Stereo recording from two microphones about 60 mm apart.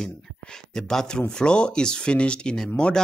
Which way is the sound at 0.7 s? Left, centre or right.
Centre.